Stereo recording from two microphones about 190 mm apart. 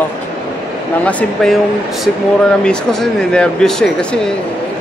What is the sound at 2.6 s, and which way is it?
Speech, 5° left (ahead or behind).